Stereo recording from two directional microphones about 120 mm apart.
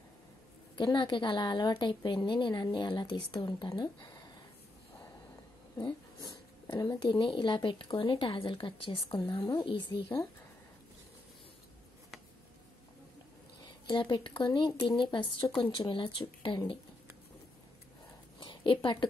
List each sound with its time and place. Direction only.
0.7 s a woman's voice: 40° left (ahead or behind)
5.8 s a woman's voice: 40° left (ahead or behind)
13.8 s a woman's voice: 40° left (ahead or behind)
18.4 s a sound: 45° left (ahead or behind)